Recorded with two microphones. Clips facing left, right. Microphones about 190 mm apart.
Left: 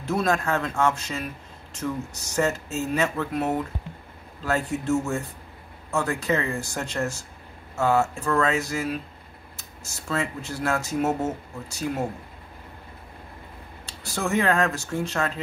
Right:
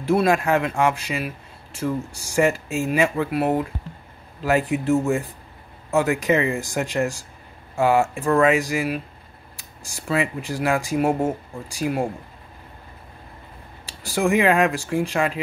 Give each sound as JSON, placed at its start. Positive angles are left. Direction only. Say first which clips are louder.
{"t": 0.0, "sound": "speech", "louder": "right 5 dB", "side_deg": -10}
{"t": 14.1, "sound": "speech", "louder": "right 5 dB", "side_deg": -15}